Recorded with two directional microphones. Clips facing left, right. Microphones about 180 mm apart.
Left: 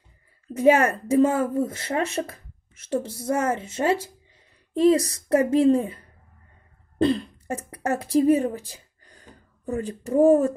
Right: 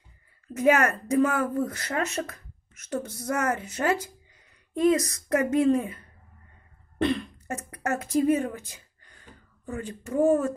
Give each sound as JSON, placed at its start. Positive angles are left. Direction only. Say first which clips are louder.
{"t": 0.5, "sound": "speech", "louder": "left 4 dB", "side_deg": 30}